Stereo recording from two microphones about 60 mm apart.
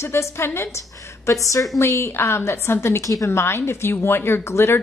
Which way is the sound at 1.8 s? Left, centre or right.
Left.